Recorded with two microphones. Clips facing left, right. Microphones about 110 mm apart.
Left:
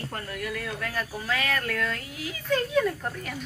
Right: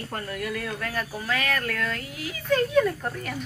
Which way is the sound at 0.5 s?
Centre (ahead or behind).